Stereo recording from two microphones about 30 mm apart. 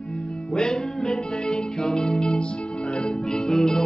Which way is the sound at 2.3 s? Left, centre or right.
Left.